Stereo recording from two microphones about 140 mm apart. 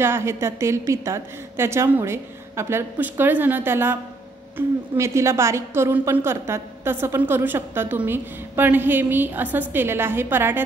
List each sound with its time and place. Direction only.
0.0 s a woman's voice: 20° right (ahead or behind)